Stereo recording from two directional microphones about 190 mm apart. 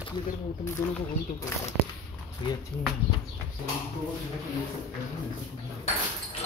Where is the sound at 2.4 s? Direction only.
25° left (ahead or behind).